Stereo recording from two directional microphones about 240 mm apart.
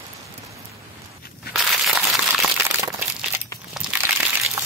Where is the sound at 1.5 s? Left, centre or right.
Centre.